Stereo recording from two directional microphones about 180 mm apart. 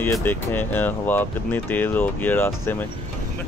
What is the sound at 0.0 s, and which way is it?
Speech, 10° left (ahead or behind).